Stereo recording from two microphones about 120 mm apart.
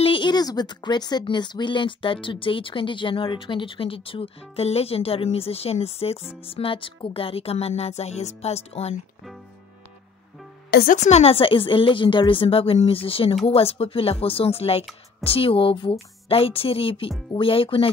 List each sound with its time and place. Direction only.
0.0 s speech: 45° left (ahead or behind)
6.4 s music: 50° left (ahead or behind)
10.9 s speech: 70° left (ahead or behind); by 13.4 s 50° left (ahead or behind)
13.5 s music: 55° left (ahead or behind)
15.2 s speech: 50° left (ahead or behind)